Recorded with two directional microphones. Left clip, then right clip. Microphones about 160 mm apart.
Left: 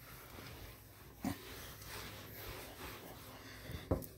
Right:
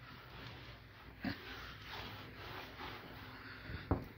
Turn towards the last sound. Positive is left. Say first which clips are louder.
# left 1 dB
turn(degrees=25)  # may be behind; listen again after turning